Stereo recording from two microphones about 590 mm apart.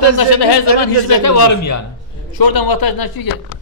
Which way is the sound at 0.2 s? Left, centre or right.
Left.